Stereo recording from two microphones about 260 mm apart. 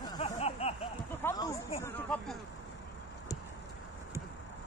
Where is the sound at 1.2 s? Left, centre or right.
Centre.